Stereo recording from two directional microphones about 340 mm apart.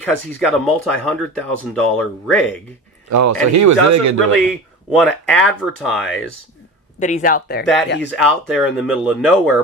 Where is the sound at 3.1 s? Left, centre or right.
Right.